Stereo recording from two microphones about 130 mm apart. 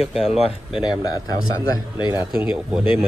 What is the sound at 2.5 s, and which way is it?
Speech, 5° right (ahead or behind).